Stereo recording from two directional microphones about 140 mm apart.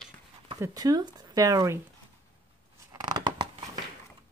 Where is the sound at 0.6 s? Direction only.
25° right (ahead or behind).